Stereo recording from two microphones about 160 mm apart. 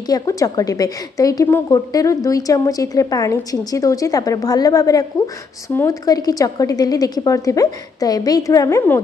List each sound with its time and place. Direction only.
0.1 s a woman's voice: 20° left (ahead or behind)